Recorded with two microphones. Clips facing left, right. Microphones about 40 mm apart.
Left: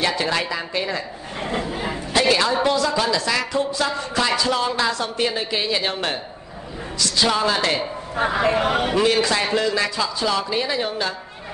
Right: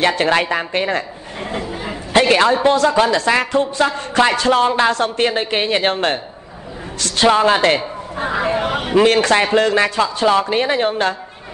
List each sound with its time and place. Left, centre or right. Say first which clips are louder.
0.0 s speech: right 6 dB; right
1.4 s a sound: right 1 dB; centre
2.1 s a man's voice: right 6 dB; right
7.2 s speech: right 9 dB; right
8.7 s a man's voice: right 4 dB; centre
9.0 s a man's voice: right 6 dB; right